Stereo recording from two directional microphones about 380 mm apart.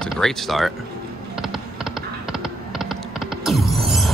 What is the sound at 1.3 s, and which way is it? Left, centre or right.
Computer keyboard, centre.